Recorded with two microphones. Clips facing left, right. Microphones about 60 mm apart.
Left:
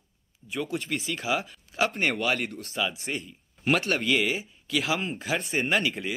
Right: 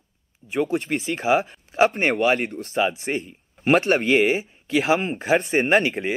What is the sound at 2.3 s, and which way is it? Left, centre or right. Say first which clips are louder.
Speech: right 7 dB; right.